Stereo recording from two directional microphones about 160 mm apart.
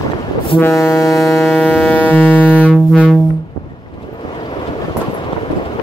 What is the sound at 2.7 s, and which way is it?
Music, 5° right (ahead or behind).